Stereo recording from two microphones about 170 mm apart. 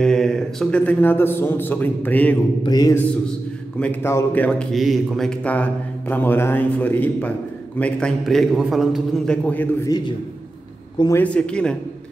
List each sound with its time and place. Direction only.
0.0 s a man's voice: 5° left (ahead or behind)
2.6 s mantra: 20° left (ahead or behind)
3.8 s a man's voice: 10° left (ahead or behind)
11.0 s mantra: 20° left (ahead or behind)
11.2 s a man's voice: 5° left (ahead or behind)